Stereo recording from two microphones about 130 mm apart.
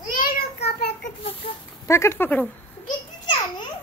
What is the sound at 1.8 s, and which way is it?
Speech, 20° left (ahead or behind).